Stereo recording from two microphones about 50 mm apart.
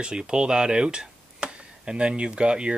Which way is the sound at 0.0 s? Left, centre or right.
Centre.